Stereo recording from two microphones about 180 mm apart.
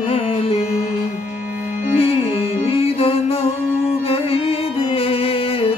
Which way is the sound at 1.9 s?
35° left (ahead or behind).